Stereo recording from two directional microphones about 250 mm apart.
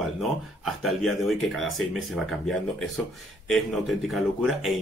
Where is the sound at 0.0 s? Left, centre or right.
Centre.